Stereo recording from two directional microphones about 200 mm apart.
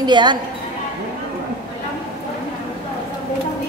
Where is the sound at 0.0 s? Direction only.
20° right (ahead or behind).